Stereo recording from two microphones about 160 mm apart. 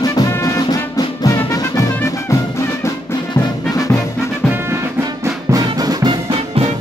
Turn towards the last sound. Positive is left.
turn(degrees=-35)  # may be behind; listen again after turning